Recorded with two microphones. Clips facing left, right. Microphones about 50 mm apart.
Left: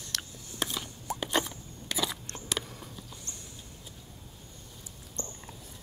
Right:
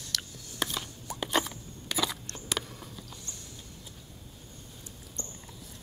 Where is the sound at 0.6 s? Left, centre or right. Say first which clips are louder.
Right 1 dB; centre.